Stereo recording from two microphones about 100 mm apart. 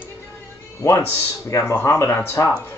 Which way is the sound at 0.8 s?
30° left (ahead or behind).